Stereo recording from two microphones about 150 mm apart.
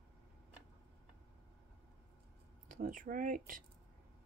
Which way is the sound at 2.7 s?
60° right (ahead or behind).